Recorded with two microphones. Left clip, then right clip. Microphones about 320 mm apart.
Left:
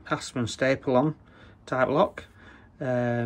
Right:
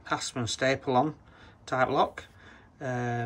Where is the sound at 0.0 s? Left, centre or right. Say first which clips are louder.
Left 1 dB; centre.